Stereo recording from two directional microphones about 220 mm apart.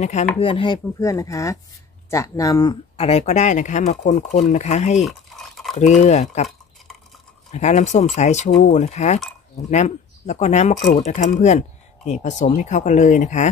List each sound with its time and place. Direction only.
0.0 s speech: 30° left (ahead or behind)
5.0 s a sound: centre (ahead or behind)
5.8 s speech: 30° left (ahead or behind)
7.5 s speech: 30° left (ahead or behind)